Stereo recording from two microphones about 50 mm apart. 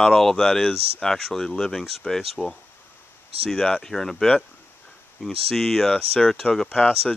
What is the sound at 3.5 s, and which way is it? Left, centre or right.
Speech, centre.